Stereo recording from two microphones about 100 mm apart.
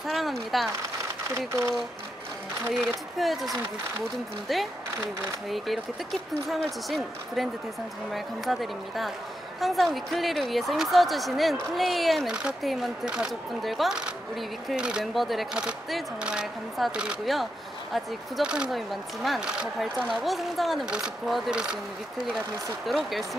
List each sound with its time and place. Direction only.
0.0 s speech: centre (ahead or behind)
1.5 s speech: 30° right (ahead or behind)
2.7 s speech: centre (ahead or behind)
6.5 s speech: centre (ahead or behind)
20.1 s speech: centre (ahead or behind)
22.8 s speech: centre (ahead or behind)